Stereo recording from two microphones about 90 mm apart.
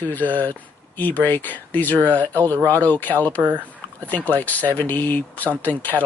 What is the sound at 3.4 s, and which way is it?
Speech, 20° right (ahead or behind).